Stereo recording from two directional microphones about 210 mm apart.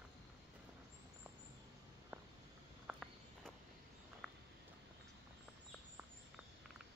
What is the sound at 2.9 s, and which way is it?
Walk, centre (ahead or behind).